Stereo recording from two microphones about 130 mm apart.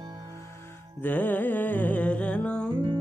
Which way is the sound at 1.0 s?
15° left (ahead or behind).